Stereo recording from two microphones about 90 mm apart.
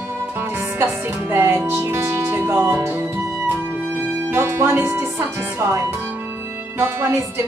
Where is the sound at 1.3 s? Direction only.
30° right (ahead or behind).